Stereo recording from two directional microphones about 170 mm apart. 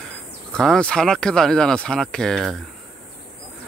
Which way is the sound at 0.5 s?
5° left (ahead or behind).